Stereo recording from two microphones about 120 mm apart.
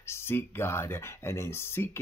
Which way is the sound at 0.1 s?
20° left (ahead or behind).